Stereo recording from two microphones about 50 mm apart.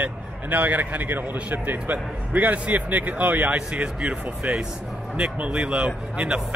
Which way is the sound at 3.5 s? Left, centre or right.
Right.